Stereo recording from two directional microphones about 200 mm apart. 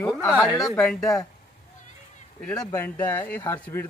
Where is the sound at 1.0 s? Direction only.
15° left (ahead or behind).